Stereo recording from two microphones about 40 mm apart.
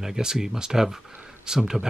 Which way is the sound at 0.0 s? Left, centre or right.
Centre.